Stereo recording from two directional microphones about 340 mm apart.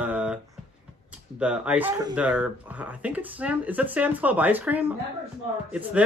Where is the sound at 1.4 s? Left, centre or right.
Centre.